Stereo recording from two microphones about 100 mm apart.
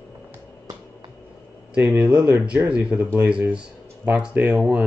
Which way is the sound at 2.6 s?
15° right (ahead or behind).